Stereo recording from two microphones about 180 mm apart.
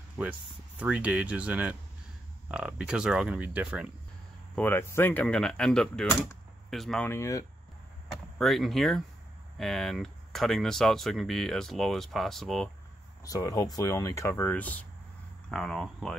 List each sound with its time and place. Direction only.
0.2 s speech: 5° right (ahead or behind)
4.6 s speech: 10° left (ahead or behind)
8.4 s speech: centre (ahead or behind)
13.2 s speech: 20° left (ahead or behind); by 16.2 s centre (ahead or behind)